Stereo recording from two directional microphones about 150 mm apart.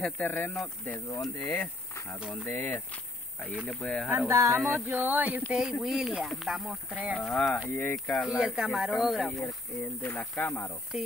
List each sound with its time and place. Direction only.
0.0 s speech: 10° left (ahead or behind)
2.1 s speech: 5° right (ahead or behind)
2.4 s speech: 15° left (ahead or behind)
4.3 s speech: 20° right (ahead or behind)
4.6 s speech: centre (ahead or behind)
4.8 s speech: 10° right (ahead or behind)
10.0 s speech: 10° left (ahead or behind)